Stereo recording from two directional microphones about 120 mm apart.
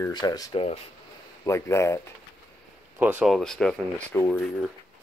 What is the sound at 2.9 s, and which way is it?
Speech, 15° right (ahead or behind).